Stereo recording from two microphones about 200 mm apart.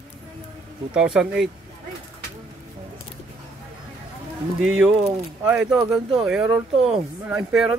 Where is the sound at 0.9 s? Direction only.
5° right (ahead or behind).